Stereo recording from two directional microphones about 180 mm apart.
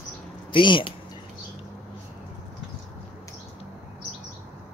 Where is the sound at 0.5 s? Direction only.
25° left (ahead or behind).